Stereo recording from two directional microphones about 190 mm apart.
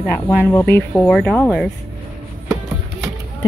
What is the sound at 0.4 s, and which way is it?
Speech, 10° left (ahead or behind).